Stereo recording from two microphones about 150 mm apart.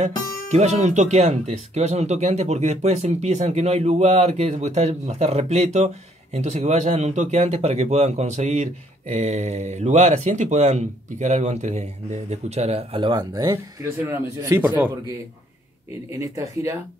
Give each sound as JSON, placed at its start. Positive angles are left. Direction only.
{"t": 0.5, "sound": "speech", "side_deg": -50}
{"t": 16.1, "sound": "speech", "side_deg": -20}